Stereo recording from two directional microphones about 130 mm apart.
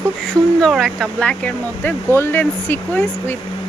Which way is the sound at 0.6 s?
5° left (ahead or behind).